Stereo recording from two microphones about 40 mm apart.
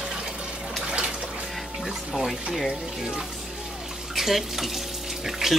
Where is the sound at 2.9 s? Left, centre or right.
Centre.